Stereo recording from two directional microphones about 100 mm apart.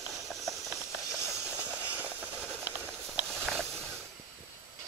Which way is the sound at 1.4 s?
15° right (ahead or behind).